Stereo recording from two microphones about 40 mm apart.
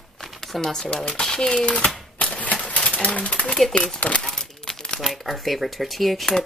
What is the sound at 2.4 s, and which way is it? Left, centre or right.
Typewriter, left.